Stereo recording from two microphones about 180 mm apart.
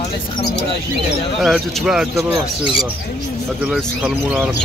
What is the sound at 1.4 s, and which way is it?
Speech, centre (ahead or behind).